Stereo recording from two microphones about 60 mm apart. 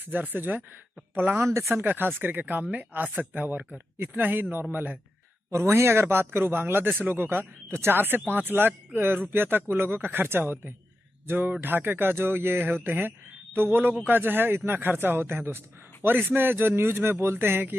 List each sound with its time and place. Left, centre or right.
0.3 s a man's voice: right
5.5 s a man's voice: right